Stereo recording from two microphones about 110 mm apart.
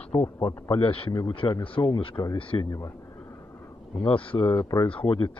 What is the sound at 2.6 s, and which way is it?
Speech, 30° left (ahead or behind).